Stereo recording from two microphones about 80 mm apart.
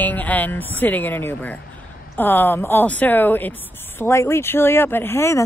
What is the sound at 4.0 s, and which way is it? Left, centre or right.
Speech, left.